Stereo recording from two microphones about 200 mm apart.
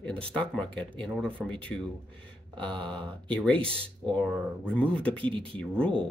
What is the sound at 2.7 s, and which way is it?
Speech, 25° right (ahead or behind).